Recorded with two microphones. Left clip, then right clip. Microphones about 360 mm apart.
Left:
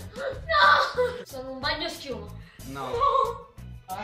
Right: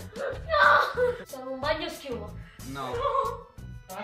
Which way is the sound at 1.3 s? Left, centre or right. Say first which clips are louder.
Right 1 dB; centre.